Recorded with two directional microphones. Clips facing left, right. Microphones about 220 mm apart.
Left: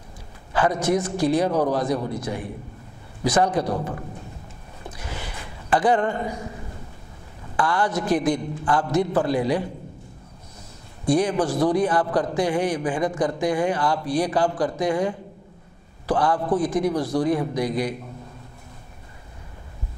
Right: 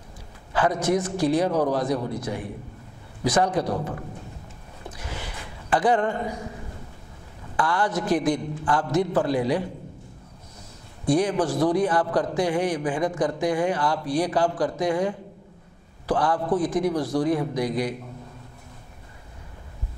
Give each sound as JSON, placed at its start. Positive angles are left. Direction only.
{"t": 0.5, "sound": "speech", "side_deg": 10}
{"t": 2.0, "sound": "a man's voice", "side_deg": 25}
{"t": 3.3, "sound": "speech", "side_deg": 10}
{"t": 3.7, "sound": "a man's voice", "side_deg": 25}
{"t": 5.0, "sound": "gasp", "side_deg": 15}
{"t": 7.5, "sound": "speech", "side_deg": 10}
{"t": 11.1, "sound": "speech", "side_deg": 10}